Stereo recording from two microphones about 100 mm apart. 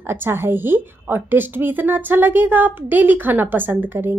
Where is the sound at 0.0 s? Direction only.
25° right (ahead or behind).